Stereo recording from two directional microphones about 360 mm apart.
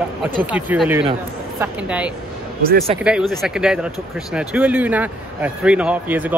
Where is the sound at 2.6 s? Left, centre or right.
Right.